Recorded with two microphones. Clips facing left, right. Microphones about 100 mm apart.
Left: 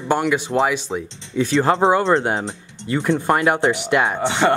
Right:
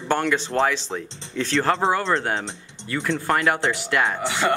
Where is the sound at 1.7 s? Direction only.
30° left (ahead or behind).